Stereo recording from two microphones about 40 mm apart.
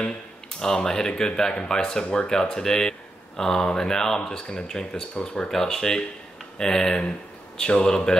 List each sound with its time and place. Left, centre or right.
0.6 s speech: centre
5.5 s speech: centre